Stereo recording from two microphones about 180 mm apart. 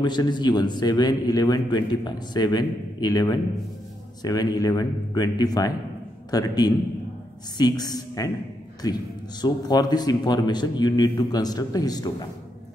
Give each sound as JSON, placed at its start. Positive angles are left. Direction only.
{"t": 0.0, "sound": "a man's voice", "side_deg": 25}